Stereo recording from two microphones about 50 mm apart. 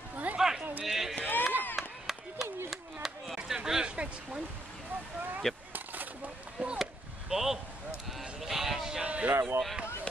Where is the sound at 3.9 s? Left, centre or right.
Right.